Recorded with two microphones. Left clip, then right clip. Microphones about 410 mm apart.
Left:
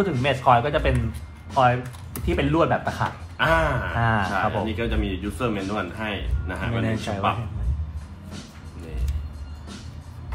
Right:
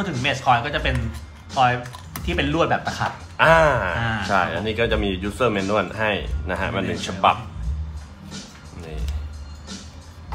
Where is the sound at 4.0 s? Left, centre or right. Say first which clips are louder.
Left 3 dB; centre.